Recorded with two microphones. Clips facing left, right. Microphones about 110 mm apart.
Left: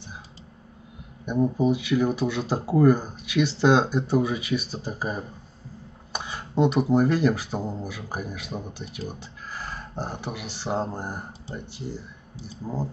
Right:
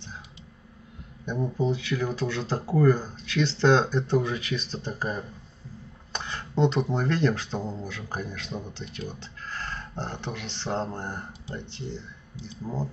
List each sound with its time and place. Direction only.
1.2 s speech: 10° left (ahead or behind)